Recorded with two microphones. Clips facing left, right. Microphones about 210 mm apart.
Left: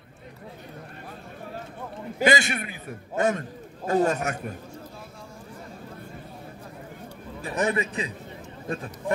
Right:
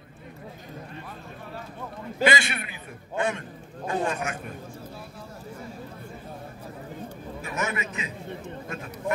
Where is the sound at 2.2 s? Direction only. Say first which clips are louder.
Left 2 dB; 45° left (ahead or behind).